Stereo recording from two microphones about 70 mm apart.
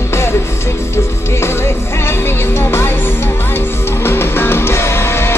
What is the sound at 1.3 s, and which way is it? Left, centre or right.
Music, left.